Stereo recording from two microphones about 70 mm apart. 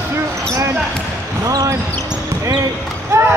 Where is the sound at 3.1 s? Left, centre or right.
Right.